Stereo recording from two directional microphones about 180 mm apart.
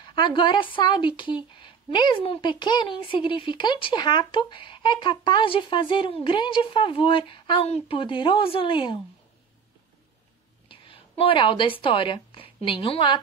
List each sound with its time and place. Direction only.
0.1 s speech: 25° left (ahead or behind)
10.7 s a woman's voice: 30° left (ahead or behind)